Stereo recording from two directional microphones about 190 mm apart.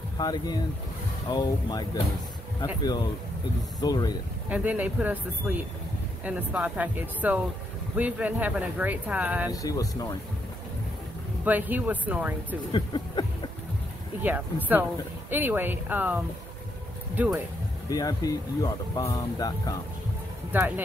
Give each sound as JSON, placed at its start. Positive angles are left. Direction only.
{"t": 0.2, "sound": "speech", "side_deg": 20}
{"t": 4.5, "sound": "speech", "side_deg": -10}
{"t": 9.5, "sound": "speech", "side_deg": 20}
{"t": 11.4, "sound": "speech", "side_deg": -10}
{"t": 12.7, "sound": "speech", "side_deg": 25}
{"t": 14.2, "sound": "speech", "side_deg": -10}
{"t": 17.8, "sound": "speech", "side_deg": 20}
{"t": 20.5, "sound": "speech", "side_deg": -10}